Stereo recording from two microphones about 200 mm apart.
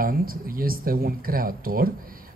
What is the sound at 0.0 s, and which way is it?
Speech, 45° right (ahead or behind).